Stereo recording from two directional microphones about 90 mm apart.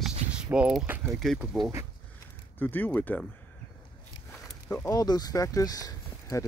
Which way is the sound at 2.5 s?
20° left (ahead or behind).